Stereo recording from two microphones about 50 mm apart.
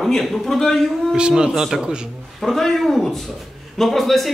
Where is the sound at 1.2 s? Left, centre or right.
Centre.